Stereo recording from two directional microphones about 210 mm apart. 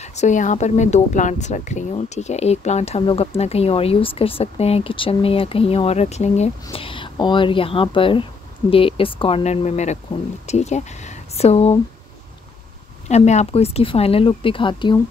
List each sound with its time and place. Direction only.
0.0 s speech: 35° left (ahead or behind)
13.1 s speech: 35° left (ahead or behind)